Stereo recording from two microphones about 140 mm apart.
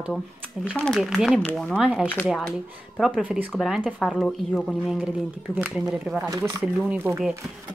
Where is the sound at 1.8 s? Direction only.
10° right (ahead or behind).